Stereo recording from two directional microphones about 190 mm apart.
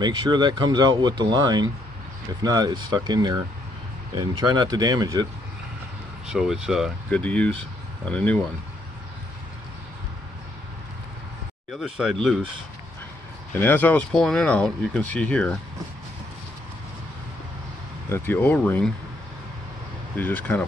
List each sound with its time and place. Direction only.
0.0 s speech: 25° right (ahead or behind)
6.2 s speech: 5° right (ahead or behind)
11.7 s speech: centre (ahead or behind)
13.5 s speech: 10° left (ahead or behind)
18.1 s speech: 10° left (ahead or behind)
20.2 s speech: 10° left (ahead or behind)